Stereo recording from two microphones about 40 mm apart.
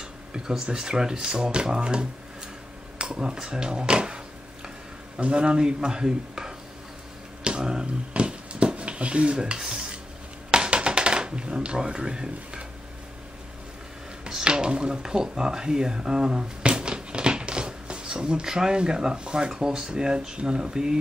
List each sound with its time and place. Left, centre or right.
0.0 s speech: centre
5.2 s speech: right
7.4 s a sound: right
8.1 s dishes: right
10.5 s a sound: right
14.3 s speech: right